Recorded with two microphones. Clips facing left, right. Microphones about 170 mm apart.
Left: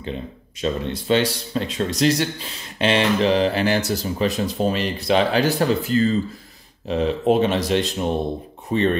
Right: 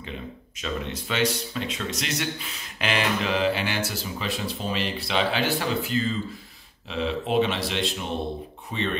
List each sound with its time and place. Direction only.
0.0 s a man's voice: 35° left (ahead or behind)